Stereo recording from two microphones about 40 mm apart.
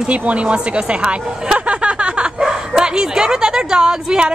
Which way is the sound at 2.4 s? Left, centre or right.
Centre.